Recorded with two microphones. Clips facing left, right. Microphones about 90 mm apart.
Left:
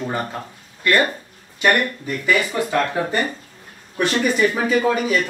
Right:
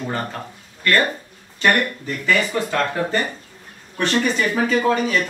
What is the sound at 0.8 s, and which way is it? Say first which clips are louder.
Speech: left 1 dB; 15° left (ahead or behind).